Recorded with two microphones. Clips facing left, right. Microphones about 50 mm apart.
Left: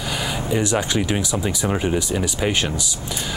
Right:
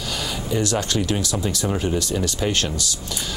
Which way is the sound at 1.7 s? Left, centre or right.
Left.